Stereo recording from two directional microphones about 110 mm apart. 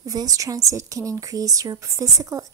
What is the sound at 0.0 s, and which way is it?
Speech, 35° right (ahead or behind).